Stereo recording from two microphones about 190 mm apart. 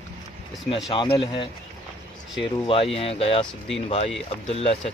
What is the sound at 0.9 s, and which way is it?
Speech, 25° left (ahead or behind).